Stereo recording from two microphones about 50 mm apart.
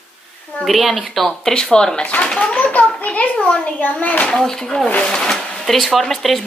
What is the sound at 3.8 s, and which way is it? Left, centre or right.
Speech, left.